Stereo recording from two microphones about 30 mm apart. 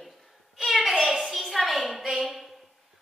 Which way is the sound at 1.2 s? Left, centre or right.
Centre.